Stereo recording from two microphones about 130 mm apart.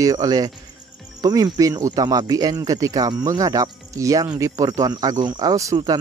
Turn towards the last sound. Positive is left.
turn(degrees=-30)  # may be behind; listen again after turning